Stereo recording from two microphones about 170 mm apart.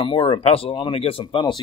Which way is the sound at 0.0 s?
30° left (ahead or behind).